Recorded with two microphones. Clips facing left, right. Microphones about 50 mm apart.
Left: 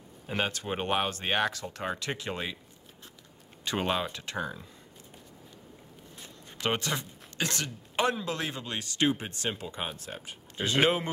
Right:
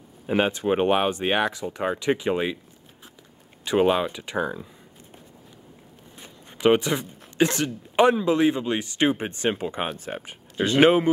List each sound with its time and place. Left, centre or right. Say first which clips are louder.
0.3 s speech: right 9 dB; centre
3.6 s speech: right 9 dB; centre
6.1 s speech: right 3 dB; centre